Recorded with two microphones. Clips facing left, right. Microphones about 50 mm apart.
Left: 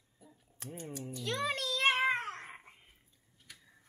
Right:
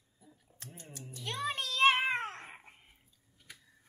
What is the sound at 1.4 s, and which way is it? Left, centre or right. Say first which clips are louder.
Speech: right 1 dB; right.